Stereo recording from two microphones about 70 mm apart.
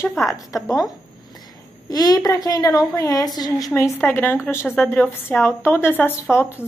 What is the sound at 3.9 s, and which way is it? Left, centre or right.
Speech, left.